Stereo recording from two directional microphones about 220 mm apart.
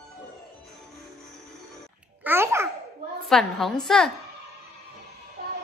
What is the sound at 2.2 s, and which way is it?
Babbling, 10° right (ahead or behind).